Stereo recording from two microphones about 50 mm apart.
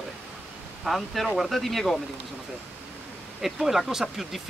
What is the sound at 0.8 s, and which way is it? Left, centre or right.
Speech, centre.